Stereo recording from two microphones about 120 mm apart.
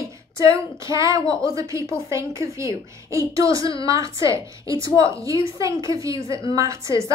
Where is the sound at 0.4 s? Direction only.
25° right (ahead or behind).